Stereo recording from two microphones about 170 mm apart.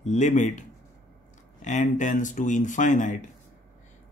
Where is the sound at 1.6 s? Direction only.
45° left (ahead or behind).